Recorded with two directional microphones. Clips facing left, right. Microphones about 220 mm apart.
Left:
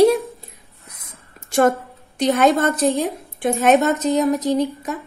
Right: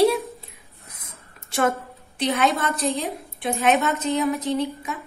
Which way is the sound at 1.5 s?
45° left (ahead or behind).